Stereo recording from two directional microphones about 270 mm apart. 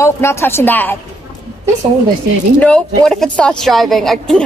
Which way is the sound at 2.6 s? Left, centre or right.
Centre.